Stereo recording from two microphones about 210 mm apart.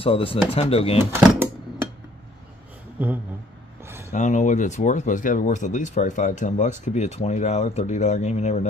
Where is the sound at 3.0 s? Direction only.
10° right (ahead or behind).